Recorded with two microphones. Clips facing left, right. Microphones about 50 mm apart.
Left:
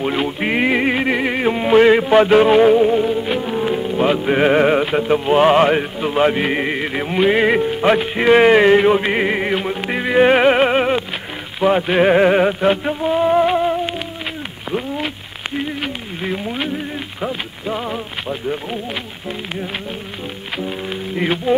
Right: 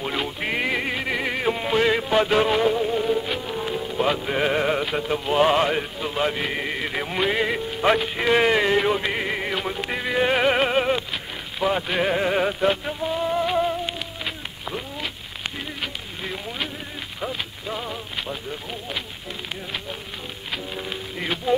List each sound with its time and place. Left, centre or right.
0.0 s music: left
3.0 s music: centre
3.3 s music: left
7.4 s music: left
7.8 s music: centre
8.2 s a sound: left
9.1 s music: left
15.8 s a sound: left
20.5 s speech: left